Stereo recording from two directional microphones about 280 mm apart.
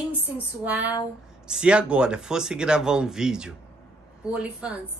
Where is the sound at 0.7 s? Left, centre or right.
Centre.